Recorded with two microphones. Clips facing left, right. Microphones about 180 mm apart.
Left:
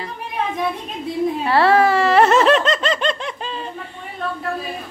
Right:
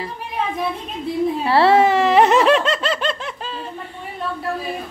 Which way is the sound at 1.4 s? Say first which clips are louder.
Right 1 dB; 25° right (ahead or behind).